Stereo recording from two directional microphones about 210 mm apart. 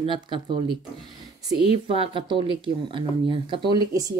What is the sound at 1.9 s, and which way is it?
Speech, 25° right (ahead or behind).